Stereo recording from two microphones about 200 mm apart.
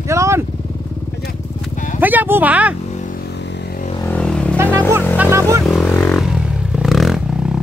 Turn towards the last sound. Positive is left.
turn(degrees=0)  # may be behind; listen again after turning